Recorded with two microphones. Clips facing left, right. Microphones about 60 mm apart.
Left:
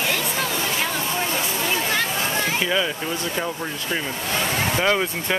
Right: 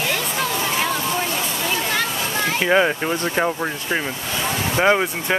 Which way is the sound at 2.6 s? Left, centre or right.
Right.